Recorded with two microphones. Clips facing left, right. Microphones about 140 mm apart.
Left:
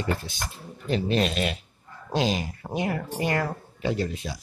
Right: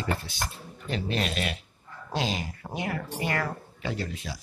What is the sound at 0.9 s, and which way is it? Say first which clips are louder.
Speech: left 6 dB; 30° left (ahead or behind).